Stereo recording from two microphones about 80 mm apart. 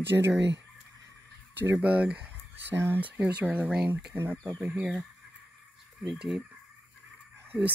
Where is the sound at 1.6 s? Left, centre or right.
Right.